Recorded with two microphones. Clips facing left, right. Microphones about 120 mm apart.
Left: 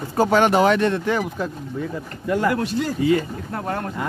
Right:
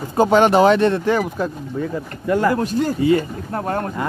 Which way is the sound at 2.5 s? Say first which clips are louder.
Right 3 dB; 40° right (ahead or behind).